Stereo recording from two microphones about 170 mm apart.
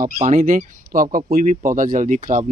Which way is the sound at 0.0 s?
45° right (ahead or behind).